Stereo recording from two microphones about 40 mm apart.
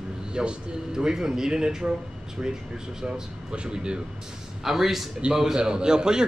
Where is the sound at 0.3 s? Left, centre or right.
Right.